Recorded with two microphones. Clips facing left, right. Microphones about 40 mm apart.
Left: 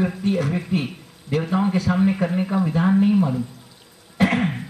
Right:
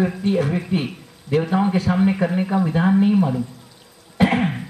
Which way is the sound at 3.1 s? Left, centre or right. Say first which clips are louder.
Right 1 dB; centre.